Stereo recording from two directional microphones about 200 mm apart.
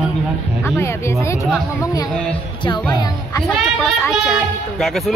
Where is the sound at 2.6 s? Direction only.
20° left (ahead or behind).